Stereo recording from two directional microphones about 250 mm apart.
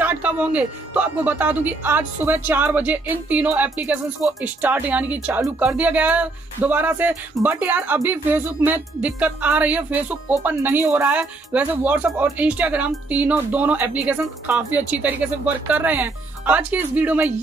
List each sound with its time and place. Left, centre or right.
0.0 s speech: centre